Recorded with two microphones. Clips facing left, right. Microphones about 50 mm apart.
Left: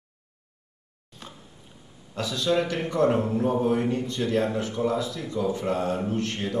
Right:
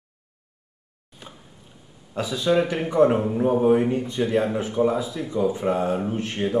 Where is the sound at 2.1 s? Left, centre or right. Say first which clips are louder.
Right 3 dB; centre.